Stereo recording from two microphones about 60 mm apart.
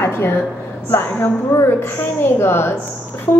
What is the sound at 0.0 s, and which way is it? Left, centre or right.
A woman's voice, left.